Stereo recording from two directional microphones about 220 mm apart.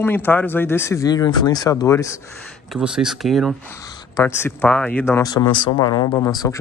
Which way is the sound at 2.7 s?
5° right (ahead or behind).